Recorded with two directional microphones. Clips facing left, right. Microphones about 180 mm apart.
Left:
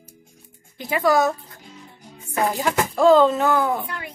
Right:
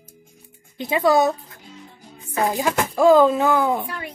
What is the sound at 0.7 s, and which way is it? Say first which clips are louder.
Speech: right 2 dB; 25° right (ahead or behind).